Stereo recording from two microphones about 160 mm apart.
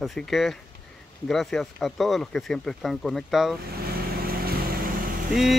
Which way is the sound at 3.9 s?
70° right (ahead or behind).